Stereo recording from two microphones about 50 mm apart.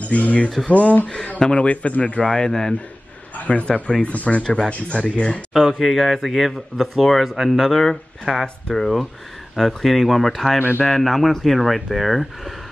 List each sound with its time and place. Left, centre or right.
0.0 s a sound: left
0.7 s a man's voice: left
1.0 s a man's voice: centre
3.3 s a man's voice: left
5.6 s speech: centre